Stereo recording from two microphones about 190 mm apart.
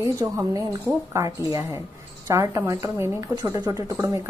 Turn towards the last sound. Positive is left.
turn(degrees=-20)  # may be behind; listen again after turning